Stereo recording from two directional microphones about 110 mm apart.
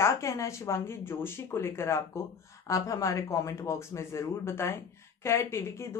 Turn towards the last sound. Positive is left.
turn(degrees=25)  # may be behind; listen again after turning